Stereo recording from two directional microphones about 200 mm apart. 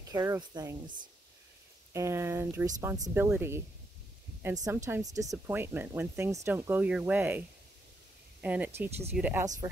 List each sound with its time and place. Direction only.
0.1 s speech: 15° right (ahead or behind)
2.0 s speech: 15° right (ahead or behind)